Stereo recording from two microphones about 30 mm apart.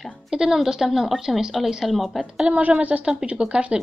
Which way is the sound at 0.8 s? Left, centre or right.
Centre.